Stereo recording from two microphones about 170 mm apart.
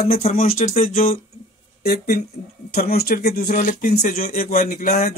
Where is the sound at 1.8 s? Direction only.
65° left (ahead or behind).